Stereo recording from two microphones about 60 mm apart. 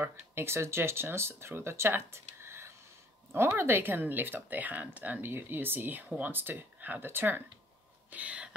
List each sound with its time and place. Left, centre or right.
0.0 s speech: right
8.1 s whispering: right